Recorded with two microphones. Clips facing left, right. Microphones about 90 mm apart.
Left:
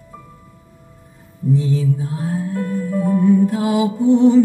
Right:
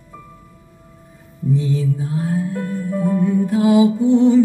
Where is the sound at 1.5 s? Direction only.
35° left (ahead or behind).